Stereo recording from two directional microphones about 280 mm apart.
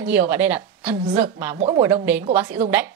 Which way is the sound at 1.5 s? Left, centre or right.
Right.